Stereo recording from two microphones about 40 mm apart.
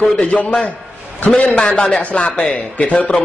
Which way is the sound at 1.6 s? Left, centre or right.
Left.